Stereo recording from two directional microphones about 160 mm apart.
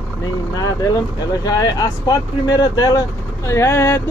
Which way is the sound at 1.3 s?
25° left (ahead or behind).